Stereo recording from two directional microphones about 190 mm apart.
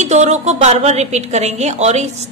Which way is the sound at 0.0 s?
40° right (ahead or behind).